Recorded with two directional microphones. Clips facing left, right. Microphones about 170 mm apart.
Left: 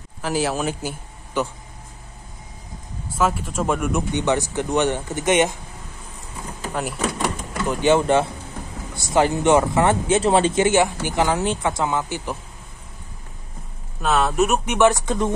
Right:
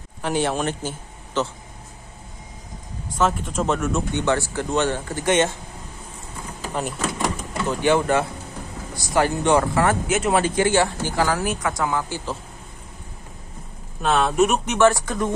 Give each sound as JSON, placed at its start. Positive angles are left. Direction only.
{"t": 0.2, "sound": "a man's voice", "side_deg": 5}
{"t": 3.2, "sound": "speech", "side_deg": 5}
{"t": 6.7, "sound": "speech", "side_deg": 0}
{"t": 7.6, "sound": "speech", "side_deg": 20}
{"t": 14.0, "sound": "speech", "side_deg": 0}
{"t": 14.8, "sound": "speech", "side_deg": 20}